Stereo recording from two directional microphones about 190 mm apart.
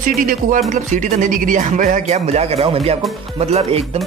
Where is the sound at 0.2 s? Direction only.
45° right (ahead or behind).